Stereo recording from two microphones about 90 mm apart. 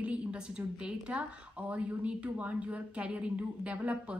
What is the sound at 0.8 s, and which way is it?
Speech, 10° right (ahead or behind).